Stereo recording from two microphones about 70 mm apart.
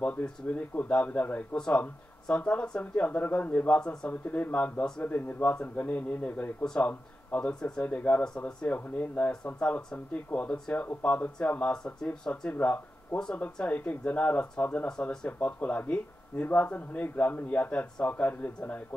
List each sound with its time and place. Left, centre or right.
0.0 s speech: centre
13.2 s speech: centre